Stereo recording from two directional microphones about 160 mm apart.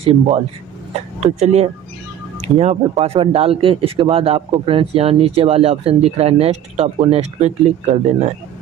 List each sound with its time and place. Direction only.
0.0 s speech: 40° right (ahead or behind)